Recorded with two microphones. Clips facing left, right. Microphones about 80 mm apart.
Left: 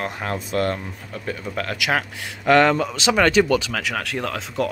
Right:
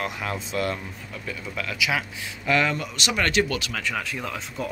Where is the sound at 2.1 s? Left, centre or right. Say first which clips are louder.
Left 10 dB; left.